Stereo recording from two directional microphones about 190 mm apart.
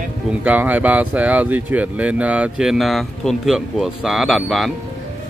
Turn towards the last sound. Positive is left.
turn(degrees=0)  # may be behind; listen again after turning